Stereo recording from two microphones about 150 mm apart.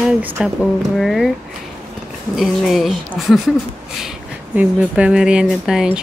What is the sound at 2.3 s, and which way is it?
Speech, centre (ahead or behind).